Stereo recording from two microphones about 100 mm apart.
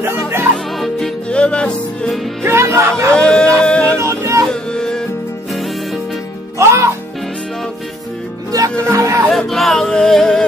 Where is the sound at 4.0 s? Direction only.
30° right (ahead or behind).